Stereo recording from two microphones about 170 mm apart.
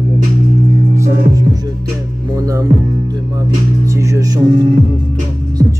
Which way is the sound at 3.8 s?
20° right (ahead or behind).